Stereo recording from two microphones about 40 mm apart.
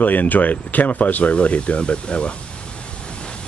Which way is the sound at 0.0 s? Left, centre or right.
Left.